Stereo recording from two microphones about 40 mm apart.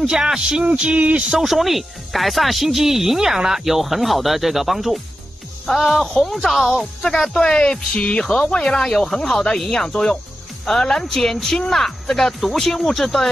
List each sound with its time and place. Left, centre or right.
0.1 s speech: centre; by 1.2 s right
1.4 s speech: centre
7.0 s speech: centre; by 8.2 s left
8.2 s speech: centre